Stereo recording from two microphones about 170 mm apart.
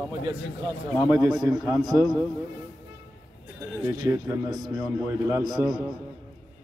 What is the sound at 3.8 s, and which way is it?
A man's voice, 15° right (ahead or behind).